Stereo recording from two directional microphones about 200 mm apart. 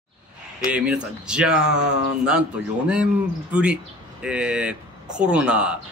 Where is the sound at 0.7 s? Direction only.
5° right (ahead or behind).